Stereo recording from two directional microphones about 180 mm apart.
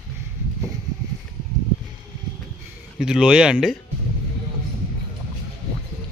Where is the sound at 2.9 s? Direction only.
5° right (ahead or behind).